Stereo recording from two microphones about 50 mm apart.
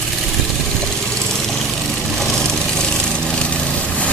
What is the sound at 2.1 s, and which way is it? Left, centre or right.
Vehicle, centre.